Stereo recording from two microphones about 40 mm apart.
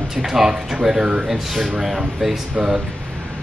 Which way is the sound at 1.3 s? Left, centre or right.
Centre.